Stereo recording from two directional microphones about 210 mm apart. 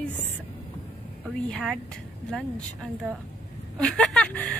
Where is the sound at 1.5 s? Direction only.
5° left (ahead or behind).